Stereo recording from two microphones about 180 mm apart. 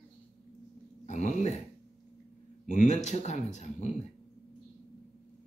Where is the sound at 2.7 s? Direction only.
40° left (ahead or behind).